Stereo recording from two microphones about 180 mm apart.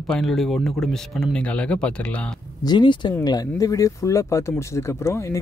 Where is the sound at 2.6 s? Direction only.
25° left (ahead or behind).